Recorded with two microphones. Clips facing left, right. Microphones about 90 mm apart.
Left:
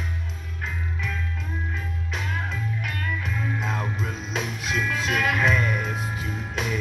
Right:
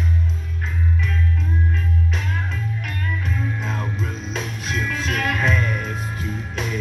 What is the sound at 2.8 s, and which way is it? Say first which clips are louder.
Music: right 2 dB; 10° left (ahead or behind).